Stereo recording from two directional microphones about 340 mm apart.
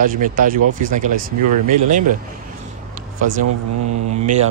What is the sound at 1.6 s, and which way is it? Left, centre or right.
Speech, right.